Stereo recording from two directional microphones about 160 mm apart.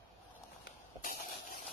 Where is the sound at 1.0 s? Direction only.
60° left (ahead or behind).